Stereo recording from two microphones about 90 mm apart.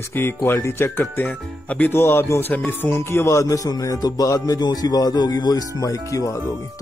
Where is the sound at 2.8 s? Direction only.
30° left (ahead or behind).